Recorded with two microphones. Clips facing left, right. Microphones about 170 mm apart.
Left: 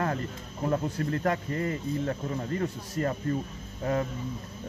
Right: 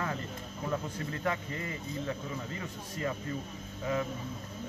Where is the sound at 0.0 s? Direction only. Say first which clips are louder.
Left 6 dB; 50° left (ahead or behind).